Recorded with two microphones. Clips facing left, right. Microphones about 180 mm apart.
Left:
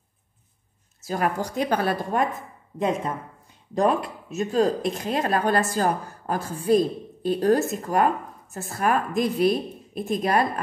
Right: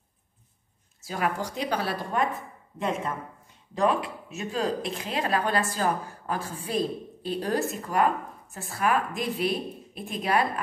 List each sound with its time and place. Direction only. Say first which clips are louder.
1.0 s speech: left 4 dB; 45° left (ahead or behind)
3.7 s speech: left 3 dB; 45° left (ahead or behind)